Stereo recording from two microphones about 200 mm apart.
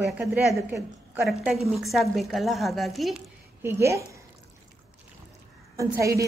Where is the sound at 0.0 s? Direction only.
5° right (ahead or behind).